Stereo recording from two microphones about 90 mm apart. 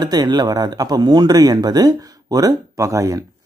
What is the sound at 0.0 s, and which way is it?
Speech, 50° right (ahead or behind).